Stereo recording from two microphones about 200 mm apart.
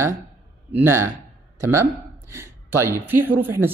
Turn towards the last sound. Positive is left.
turn(degrees=-10)  # may be behind; listen again after turning